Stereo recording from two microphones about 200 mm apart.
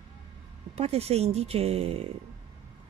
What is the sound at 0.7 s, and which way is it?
Speech, 30° right (ahead or behind).